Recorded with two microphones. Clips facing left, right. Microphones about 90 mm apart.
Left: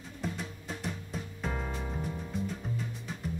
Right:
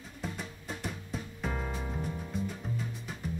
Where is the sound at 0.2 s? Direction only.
Centre (ahead or behind).